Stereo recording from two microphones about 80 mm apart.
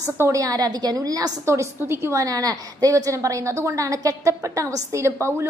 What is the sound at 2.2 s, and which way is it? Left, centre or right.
A woman's voice, right.